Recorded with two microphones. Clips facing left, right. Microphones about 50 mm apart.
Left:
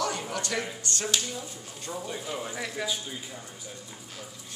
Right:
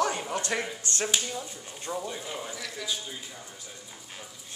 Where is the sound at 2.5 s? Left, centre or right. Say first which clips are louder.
Left 5 dB; left.